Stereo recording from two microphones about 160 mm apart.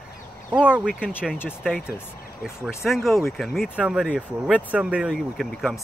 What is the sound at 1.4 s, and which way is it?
Speech, 15° left (ahead or behind).